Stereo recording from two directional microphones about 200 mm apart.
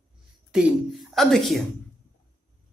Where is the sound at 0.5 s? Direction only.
5° right (ahead or behind).